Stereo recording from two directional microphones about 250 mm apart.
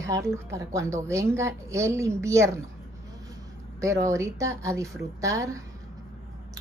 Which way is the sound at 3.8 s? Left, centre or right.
Centre.